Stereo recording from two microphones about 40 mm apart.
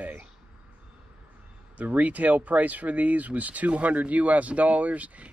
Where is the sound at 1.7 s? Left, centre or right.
Right.